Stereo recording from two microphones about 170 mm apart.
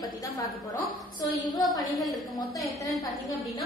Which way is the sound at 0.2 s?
20° left (ahead or behind).